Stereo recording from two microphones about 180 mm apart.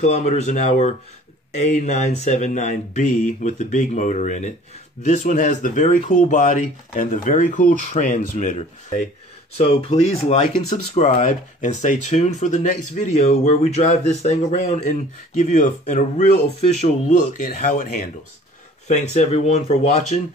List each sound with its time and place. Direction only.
0.0 s speech: 40° left (ahead or behind)
9.6 s speech: 30° left (ahead or behind)